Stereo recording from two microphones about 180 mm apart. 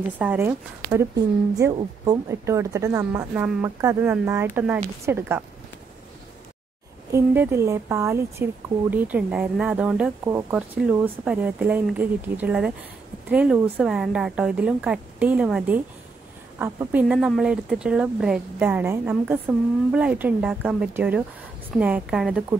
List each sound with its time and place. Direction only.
0.2 s speech: 10° right (ahead or behind)
7.1 s speech: 15° right (ahead or behind)